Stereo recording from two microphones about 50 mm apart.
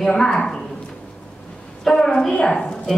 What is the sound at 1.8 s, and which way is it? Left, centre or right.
A woman's voice, centre.